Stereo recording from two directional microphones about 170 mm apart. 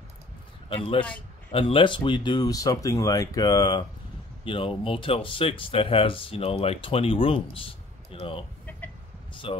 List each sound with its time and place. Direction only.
0.7 s speech: 30° left (ahead or behind)